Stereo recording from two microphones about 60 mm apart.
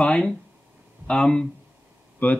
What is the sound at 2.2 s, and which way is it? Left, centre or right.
Speech, left.